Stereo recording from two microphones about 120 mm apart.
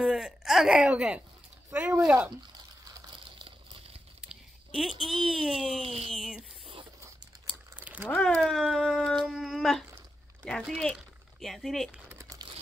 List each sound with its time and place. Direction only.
0.0 s speech: 5° right (ahead or behind)
3.3 s crumpling: 45° right (ahead or behind)
4.3 s a sound: centre (ahead or behind)
5.0 s speech: centre (ahead or behind)
5.8 s a sound: 60° right (ahead or behind)
6.1 s speech: centre (ahead or behind)
7.7 s a sound: 15° right (ahead or behind)
8.1 s speech: 10° left (ahead or behind)
12.1 s crumpling: 20° right (ahead or behind)